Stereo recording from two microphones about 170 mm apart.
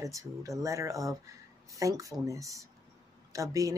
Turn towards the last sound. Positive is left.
turn(degrees=-20)  # may be behind; listen again after turning